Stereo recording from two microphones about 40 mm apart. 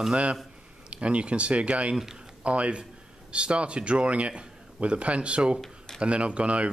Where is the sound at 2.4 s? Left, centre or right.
Right.